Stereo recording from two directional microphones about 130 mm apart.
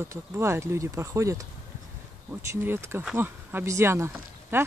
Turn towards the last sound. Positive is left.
turn(degrees=-20)  # may be behind; listen again after turning